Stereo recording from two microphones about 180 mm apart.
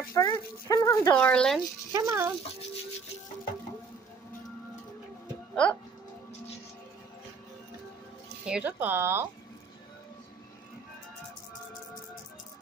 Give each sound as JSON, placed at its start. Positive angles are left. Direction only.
{"t": 0.1, "sound": "speech", "side_deg": 20}
{"t": 1.9, "sound": "speech", "side_deg": -15}
{"t": 8.5, "sound": "speech", "side_deg": -5}